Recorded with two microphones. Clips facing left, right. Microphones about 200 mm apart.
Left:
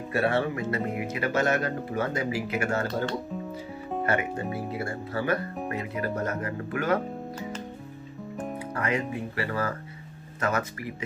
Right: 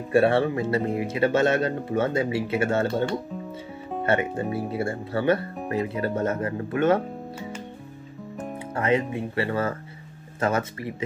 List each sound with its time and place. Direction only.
0.1 s speech: 30° right (ahead or behind)
4.0 s speech: 25° right (ahead or behind)
8.7 s speech: 25° right (ahead or behind)